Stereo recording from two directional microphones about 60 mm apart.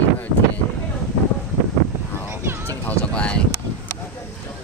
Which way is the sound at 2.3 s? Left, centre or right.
Right.